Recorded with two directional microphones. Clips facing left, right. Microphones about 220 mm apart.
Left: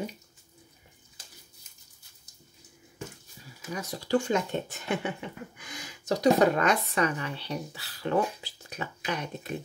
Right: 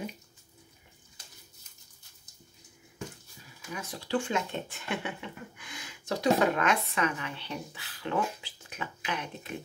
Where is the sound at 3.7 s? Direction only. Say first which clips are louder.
Left 5 dB; 40° left (ahead or behind).